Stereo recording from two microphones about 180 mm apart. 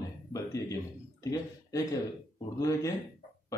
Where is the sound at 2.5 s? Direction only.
20° left (ahead or behind).